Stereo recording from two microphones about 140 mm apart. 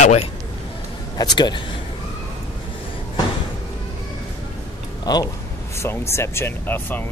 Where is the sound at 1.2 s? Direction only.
30° left (ahead or behind).